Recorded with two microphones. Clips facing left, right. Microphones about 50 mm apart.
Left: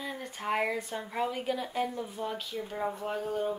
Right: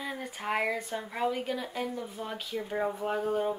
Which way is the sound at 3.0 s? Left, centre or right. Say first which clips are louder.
Right 3 dB; centre.